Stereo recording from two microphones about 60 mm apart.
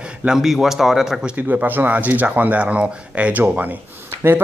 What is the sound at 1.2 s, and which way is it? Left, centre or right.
Speech, right.